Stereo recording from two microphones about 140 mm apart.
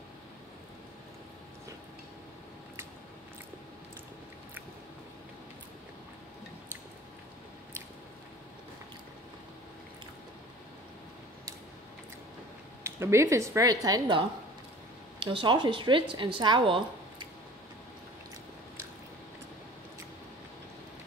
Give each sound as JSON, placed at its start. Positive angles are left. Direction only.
{"t": 12.8, "sound": "a woman's voice", "side_deg": -20}